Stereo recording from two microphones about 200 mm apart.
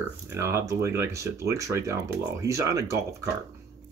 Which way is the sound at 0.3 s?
15° right (ahead or behind).